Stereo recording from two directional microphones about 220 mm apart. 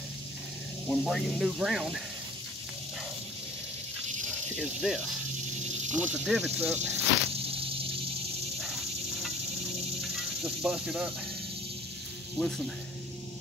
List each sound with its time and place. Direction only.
0.8 s speech: centre (ahead or behind)
4.6 s speech: centre (ahead or behind)
7.3 s a sound: 25° right (ahead or behind)
8.5 s cricket: centre (ahead or behind)
10.0 s speech: centre (ahead or behind)
12.4 s speech: centre (ahead or behind)